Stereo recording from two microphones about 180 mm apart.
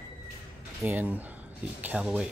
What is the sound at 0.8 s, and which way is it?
Speech, 10° right (ahead or behind).